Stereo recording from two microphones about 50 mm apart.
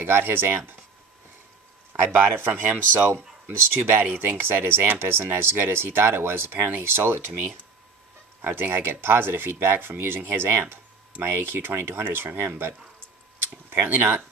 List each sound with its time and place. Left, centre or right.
0.0 s speech: right
2.1 s speech: right
13.4 s a sound: right